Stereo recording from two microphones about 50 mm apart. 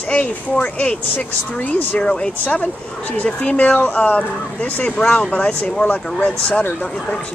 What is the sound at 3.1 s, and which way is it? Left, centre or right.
Speech, left.